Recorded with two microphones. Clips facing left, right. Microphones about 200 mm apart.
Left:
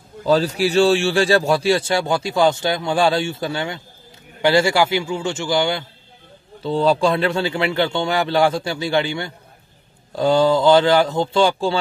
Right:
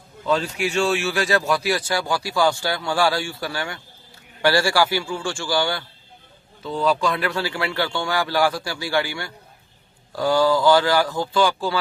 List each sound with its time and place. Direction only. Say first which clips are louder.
0.2 s speech: left 5 dB; 35° left (ahead or behind)